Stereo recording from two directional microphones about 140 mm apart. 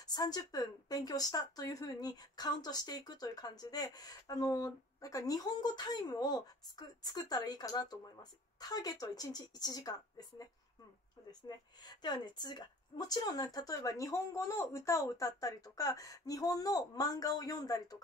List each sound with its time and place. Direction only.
0.0 s a woman's voice: 30° left (ahead or behind)